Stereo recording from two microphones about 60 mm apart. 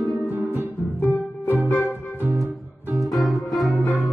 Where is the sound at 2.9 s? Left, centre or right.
Centre.